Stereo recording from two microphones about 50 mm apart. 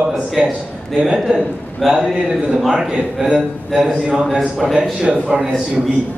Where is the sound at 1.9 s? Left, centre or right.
Centre.